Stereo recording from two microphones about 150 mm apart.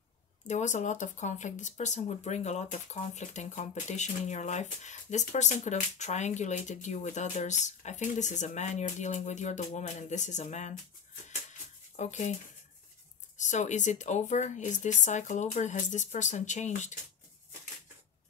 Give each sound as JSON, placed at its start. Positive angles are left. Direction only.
{"t": 0.5, "sound": "speech", "side_deg": 55}
{"t": 12.0, "sound": "speech", "side_deg": 50}
{"t": 13.4, "sound": "speech", "side_deg": 55}